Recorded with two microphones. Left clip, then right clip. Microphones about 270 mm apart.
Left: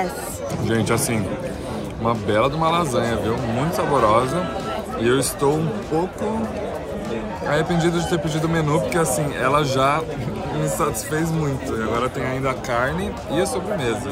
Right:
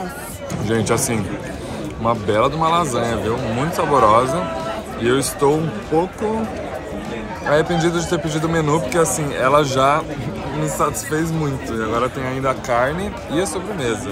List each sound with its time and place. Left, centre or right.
0.7 s a man's voice: centre
7.4 s a man's voice: centre